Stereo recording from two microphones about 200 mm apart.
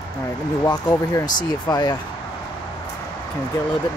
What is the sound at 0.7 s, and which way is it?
Speech, 20° left (ahead or behind).